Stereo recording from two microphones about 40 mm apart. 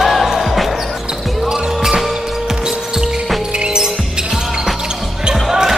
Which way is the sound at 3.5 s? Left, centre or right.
Centre.